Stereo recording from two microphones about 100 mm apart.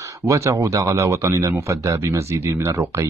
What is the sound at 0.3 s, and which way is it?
Speech, 30° right (ahead or behind).